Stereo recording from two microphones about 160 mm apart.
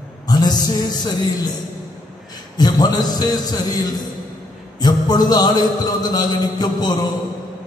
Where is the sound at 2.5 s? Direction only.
25° left (ahead or behind).